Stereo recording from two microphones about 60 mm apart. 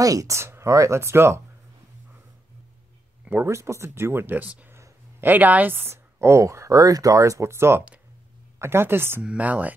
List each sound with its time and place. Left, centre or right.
0.0 s speech: right
0.4 s speech: right
3.4 s speech: right
4.4 s a woman's voice: right
6.1 s speech: right
9.4 s speech: right